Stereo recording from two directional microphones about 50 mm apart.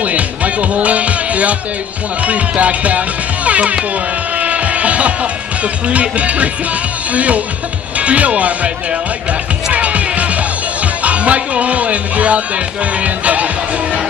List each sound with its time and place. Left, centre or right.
0.0 s music: right
2.2 s speech: right
4.4 s music: right
5.6 s speech: right
9.7 s music: right
11.1 s speech: right